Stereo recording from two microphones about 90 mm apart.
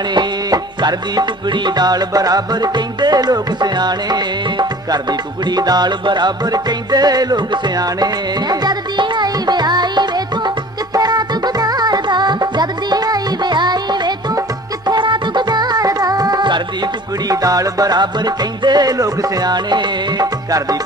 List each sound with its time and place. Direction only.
0.1 s music: 55° right (ahead or behind)
17.3 s music: 40° right (ahead or behind)